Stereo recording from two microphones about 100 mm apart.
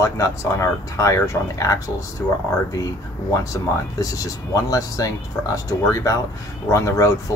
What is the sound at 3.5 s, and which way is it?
Speech, 35° left (ahead or behind).